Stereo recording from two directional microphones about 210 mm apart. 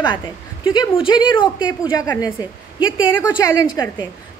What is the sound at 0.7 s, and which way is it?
A woman's voice, 25° left (ahead or behind).